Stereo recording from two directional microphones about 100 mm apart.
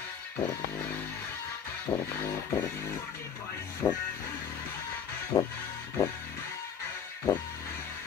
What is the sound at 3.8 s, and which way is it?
Music, 40° left (ahead or behind).